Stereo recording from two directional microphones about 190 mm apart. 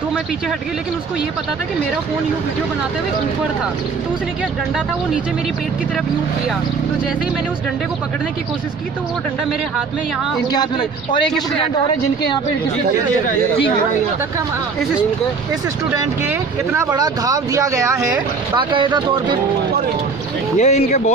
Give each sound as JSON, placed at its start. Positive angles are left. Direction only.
{"t": 10.5, "sound": "speech", "side_deg": 20}
{"t": 16.0, "sound": "speech", "side_deg": -15}
{"t": 20.5, "sound": "speech", "side_deg": 35}